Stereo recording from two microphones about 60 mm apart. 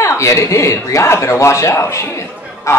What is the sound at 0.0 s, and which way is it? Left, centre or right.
A man's voice, left.